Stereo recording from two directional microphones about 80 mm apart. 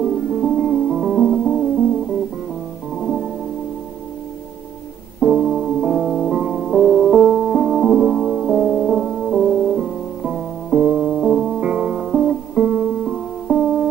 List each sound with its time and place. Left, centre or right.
0.4 s music: centre
3.0 s music: centre
5.2 s music: centre